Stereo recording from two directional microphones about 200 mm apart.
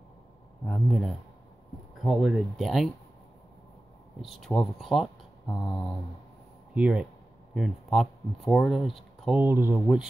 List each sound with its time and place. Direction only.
0.7 s speech: 5° left (ahead or behind)
4.2 s speech: centre (ahead or behind)
6.7 s speech: 5° right (ahead or behind)